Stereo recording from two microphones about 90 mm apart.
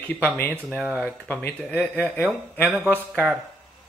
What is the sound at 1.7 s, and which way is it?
Speech, 15° left (ahead or behind).